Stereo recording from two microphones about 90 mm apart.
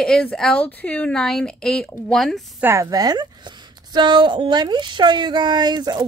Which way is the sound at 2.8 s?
45° right (ahead or behind).